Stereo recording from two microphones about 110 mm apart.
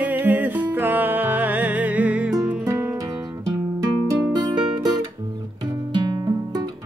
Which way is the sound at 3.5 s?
35° right (ahead or behind).